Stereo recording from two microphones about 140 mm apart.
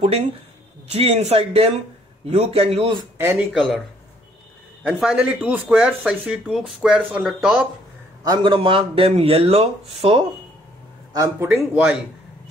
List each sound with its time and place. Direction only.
0.9 s a man's voice: 45° right (ahead or behind)
3.2 s speech: 15° right (ahead or behind)
3.5 s speech: centre (ahead or behind)
4.8 s speech: 5° right (ahead or behind)
8.2 s speech: 30° right (ahead or behind)
11.1 s speech: 20° right (ahead or behind)